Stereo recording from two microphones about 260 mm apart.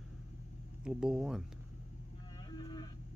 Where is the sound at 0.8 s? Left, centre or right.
Centre.